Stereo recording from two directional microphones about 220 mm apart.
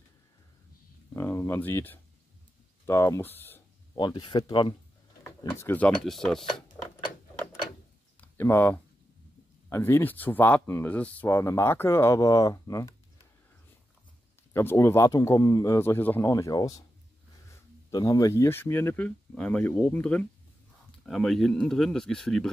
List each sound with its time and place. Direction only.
1.1 s speech: 10° left (ahead or behind)
3.9 s speech: 20° left (ahead or behind); by 6.4 s centre (ahead or behind)
8.2 s a sound: 10° left (ahead or behind)
9.7 s speech: 10° left (ahead or behind)
14.5 s speech: 10° left (ahead or behind)